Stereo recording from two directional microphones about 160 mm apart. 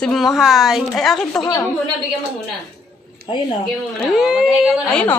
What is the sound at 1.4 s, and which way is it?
Speech, 25° left (ahead or behind).